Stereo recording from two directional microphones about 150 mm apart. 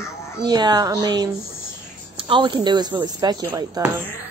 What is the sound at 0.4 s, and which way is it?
Speech, 30° right (ahead or behind).